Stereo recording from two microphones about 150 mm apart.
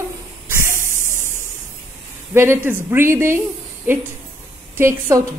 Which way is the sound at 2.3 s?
15° right (ahead or behind).